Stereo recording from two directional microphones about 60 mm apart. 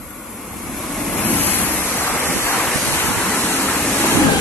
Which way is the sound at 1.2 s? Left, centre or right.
Left.